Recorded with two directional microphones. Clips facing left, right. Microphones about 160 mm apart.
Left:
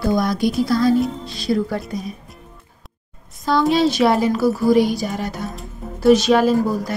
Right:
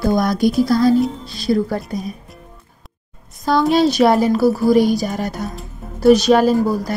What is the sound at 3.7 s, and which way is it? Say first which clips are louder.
Speech: right 3 dB; 40° right (ahead or behind).